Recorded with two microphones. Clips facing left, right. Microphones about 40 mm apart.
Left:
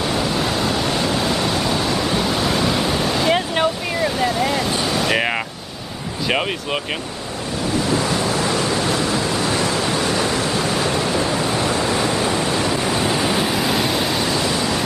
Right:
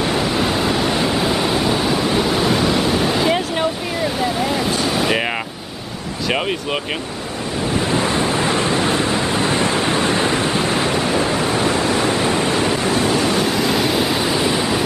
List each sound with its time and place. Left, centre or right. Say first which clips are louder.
0.0 s waves: right 2 dB; centre
3.3 s vehicle: left 1 dB; centre
6.2 s a sound: right 1 dB; centre
7.9 s vehicle: right 2 dB; right
13.0 s waves: right 2 dB; centre